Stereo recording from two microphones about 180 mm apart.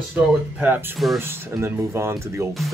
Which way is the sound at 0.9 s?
Centre (ahead or behind).